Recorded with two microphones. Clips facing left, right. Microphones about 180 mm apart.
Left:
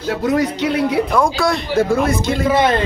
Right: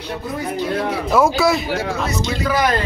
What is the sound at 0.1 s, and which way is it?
Speech, 80° left.